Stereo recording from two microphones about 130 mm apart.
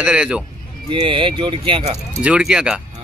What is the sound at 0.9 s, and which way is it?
Speech, 40° right (ahead or behind).